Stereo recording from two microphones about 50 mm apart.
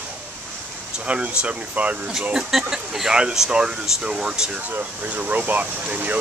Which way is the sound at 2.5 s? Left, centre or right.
Centre.